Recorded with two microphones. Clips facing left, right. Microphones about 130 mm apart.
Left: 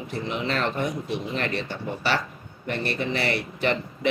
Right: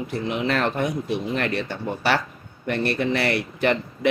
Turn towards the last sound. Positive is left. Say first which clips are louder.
# right 3 dB
turn(degrees=-50)  # may be behind; listen again after turning